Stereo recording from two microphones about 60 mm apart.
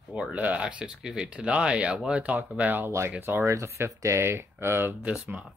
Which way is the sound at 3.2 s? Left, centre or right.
Right.